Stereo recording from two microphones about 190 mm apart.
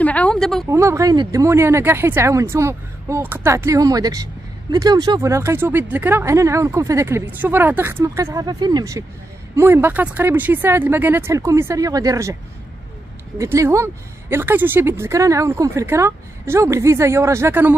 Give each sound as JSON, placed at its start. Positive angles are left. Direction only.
{"t": 0.0, "sound": "a sound", "side_deg": 10}
{"t": 0.7, "sound": "speech", "side_deg": -15}
{"t": 13.4, "sound": "speech", "side_deg": -15}